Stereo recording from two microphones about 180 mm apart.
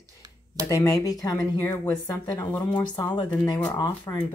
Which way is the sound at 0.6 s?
20° left (ahead or behind).